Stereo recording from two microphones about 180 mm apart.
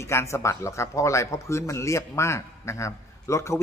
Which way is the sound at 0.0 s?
15° left (ahead or behind).